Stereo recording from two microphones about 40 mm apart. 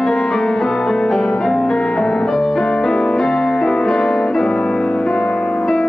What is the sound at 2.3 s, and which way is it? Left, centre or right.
Music, centre.